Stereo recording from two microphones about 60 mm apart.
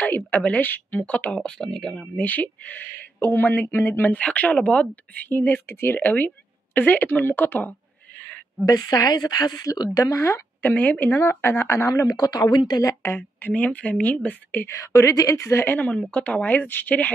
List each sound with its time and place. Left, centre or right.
0.0 s speech: left
1.4 s speech: centre
2.1 s a woman's voice: left
4.2 s speech: left
5.4 s a woman's voice: left
8.2 s a sound: left
8.6 s a woman's voice: left
10.6 s a woman's voice: left
11.1 s speech: left
12.1 s a woman's voice: left
13.2 s speech: left
14.7 s a woman's voice: left
16.1 s speech: left